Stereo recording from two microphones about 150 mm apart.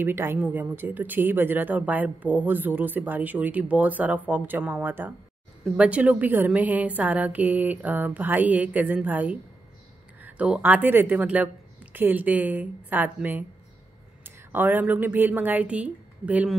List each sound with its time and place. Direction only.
0.0 s a woman's voice: 15° right (ahead or behind)